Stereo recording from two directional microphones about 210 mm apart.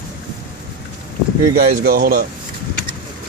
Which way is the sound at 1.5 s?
45° right (ahead or behind).